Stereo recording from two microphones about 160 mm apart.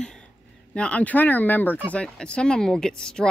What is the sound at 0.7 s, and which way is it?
A woman's voice, 10° left (ahead or behind).